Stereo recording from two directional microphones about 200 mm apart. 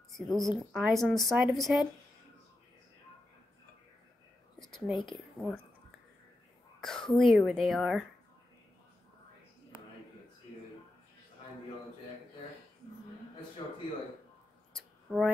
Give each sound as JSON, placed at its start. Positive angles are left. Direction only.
{"t": 0.1, "sound": "a woman's voice", "side_deg": 0}
{"t": 4.6, "sound": "speech", "side_deg": 0}
{"t": 6.8, "sound": "a woman's voice", "side_deg": 5}
{"t": 13.6, "sound": "speech", "side_deg": 20}
{"t": 15.1, "sound": "speech", "side_deg": -5}